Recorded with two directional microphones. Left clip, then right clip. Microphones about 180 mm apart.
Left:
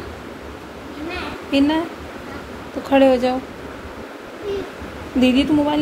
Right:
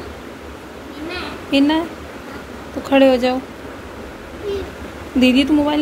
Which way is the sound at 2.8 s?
5° right (ahead or behind).